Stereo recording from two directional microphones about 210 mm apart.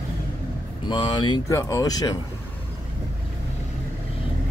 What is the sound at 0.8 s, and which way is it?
Speech, 20° left (ahead or behind).